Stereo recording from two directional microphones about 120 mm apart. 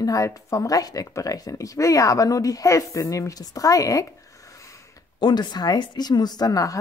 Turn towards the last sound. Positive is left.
turn(degrees=30)  # may be behind; listen again after turning